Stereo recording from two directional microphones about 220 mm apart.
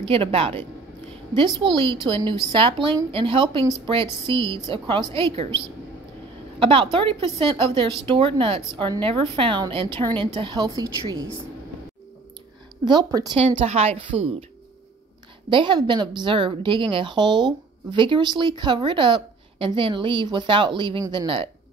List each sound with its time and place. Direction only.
0.0 s a woman's voice: 25° right (ahead or behind)
6.6 s a woman's voice: 25° right (ahead or behind)
12.8 s a woman's voice: 20° right (ahead or behind)
15.5 s a woman's voice: 20° right (ahead or behind)